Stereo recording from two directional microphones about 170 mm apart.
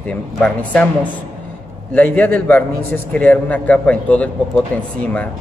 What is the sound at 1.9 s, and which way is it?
A man's voice, 10° left (ahead or behind).